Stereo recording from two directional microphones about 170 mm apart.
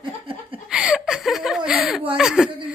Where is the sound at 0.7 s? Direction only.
5° right (ahead or behind).